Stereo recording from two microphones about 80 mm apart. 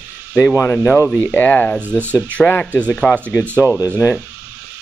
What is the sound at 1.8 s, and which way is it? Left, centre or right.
Speech, right.